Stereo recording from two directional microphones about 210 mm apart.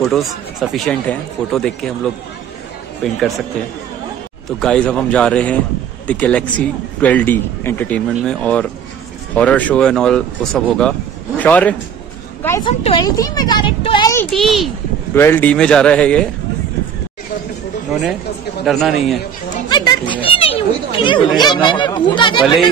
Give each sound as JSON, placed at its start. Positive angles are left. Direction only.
{"t": 0.1, "sound": "speech", "side_deg": 0}
{"t": 3.0, "sound": "speech", "side_deg": 0}
{"t": 4.5, "sound": "a man's voice", "side_deg": 0}
{"t": 12.6, "sound": "speech", "side_deg": 20}
{"t": 14.3, "sound": "speech", "side_deg": 0}
{"t": 18.7, "sound": "speech", "side_deg": 0}
{"t": 19.7, "sound": "a sound", "side_deg": 20}